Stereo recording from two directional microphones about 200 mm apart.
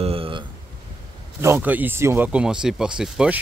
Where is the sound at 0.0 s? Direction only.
30° right (ahead or behind).